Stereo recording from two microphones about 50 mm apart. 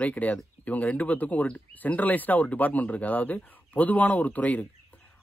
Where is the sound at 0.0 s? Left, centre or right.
Left.